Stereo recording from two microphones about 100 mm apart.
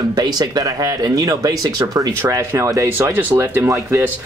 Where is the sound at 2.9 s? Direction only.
20° right (ahead or behind).